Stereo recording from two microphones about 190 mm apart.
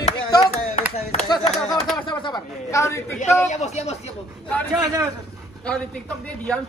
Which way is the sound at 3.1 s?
40° left (ahead or behind).